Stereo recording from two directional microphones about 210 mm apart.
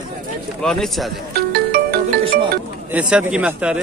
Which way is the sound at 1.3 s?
45° right (ahead or behind).